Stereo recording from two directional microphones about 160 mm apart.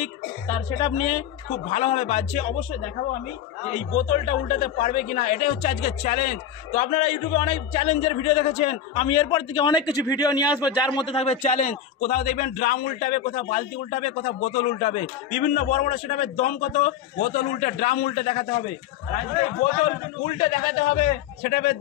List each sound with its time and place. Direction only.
0.7 s speech: 40° left (ahead or behind)
3.7 s speech: 50° left (ahead or behind)
20.2 s a man's voice: 50° left (ahead or behind); by 21.7 s 80° left